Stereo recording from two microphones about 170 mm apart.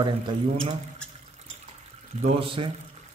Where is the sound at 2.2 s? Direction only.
30° right (ahead or behind).